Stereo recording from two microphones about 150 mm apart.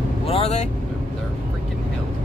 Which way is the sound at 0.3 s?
45° left (ahead or behind).